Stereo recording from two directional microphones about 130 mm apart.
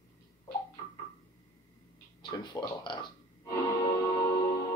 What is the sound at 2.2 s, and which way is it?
Speech, 35° left (ahead or behind).